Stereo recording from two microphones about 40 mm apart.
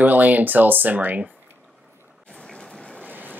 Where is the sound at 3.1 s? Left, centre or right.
Right.